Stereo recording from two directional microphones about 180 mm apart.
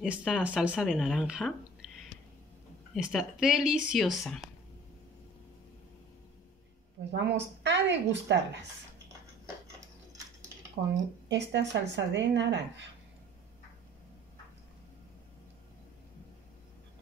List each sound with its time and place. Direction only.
0.0 s speech: 5° right (ahead or behind)
2.9 s speech: centre (ahead or behind)
7.2 s a woman's voice: 75° right (ahead or behind)
11.2 s speech: 75° right (ahead or behind)